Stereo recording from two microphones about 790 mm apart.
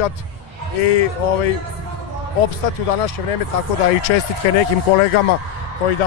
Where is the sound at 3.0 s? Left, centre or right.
Left.